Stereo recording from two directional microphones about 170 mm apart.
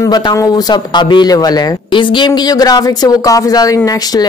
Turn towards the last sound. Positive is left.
turn(degrees=20)  # may be behind; listen again after turning